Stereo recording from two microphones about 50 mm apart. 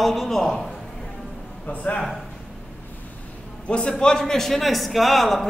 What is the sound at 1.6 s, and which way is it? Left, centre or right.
Speech, left.